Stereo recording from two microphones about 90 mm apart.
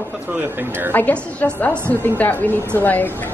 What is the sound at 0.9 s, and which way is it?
A woman's voice, 20° left (ahead or behind).